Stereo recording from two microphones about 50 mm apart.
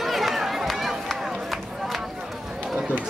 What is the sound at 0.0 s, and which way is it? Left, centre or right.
Run, centre.